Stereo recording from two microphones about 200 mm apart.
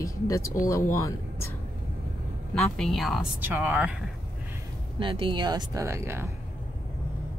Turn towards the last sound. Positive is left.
turn(degrees=-15)  # may be behind; listen again after turning